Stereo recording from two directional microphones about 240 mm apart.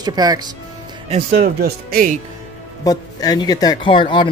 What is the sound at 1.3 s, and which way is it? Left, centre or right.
Speech, right.